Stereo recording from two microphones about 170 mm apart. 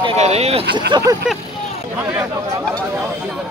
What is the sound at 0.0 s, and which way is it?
Speech, 35° right (ahead or behind).